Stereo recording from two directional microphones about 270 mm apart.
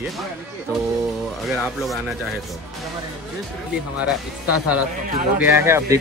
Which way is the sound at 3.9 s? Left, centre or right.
Centre.